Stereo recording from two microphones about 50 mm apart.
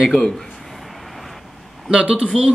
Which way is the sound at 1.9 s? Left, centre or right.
Centre.